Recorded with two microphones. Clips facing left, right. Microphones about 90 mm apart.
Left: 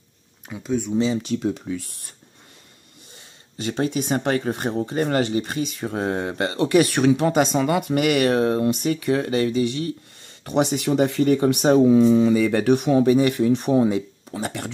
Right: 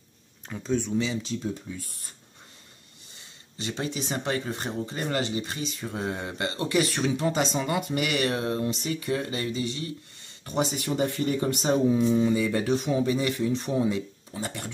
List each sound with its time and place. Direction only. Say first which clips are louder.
0.5 s speech: left 3 dB; 10° left (ahead or behind)
1.1 s speech: left 7 dB; 60° left (ahead or behind)
3.5 s speech: left 8 dB; 45° left (ahead or behind)
9.1 s speech: left 9 dB; 70° left (ahead or behind)
11.3 s speech: left 9 dB; 60° left (ahead or behind)
14.3 s speech: left 6 dB; 70° left (ahead or behind)